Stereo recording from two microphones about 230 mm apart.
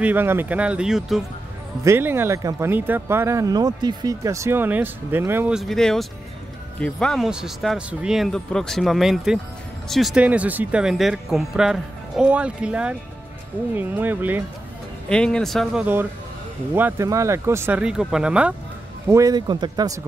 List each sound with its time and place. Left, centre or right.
0.0 s speech: centre
15.0 s speech: centre